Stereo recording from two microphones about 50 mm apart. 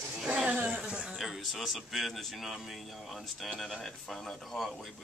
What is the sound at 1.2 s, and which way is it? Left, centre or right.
Speech, centre.